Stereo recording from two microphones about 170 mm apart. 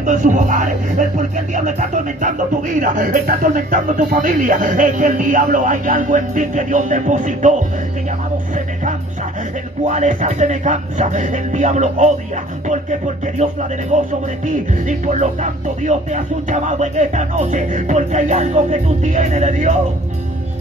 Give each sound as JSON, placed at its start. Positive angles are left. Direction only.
{"t": 0.0, "sound": "speech", "side_deg": -45}
{"t": 9.8, "sound": "speech", "side_deg": -45}
{"t": 13.9, "sound": "speech", "side_deg": -45}